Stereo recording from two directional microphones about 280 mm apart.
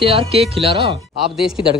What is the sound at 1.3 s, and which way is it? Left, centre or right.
Speech, centre.